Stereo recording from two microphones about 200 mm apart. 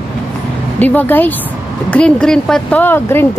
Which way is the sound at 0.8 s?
10° left (ahead or behind).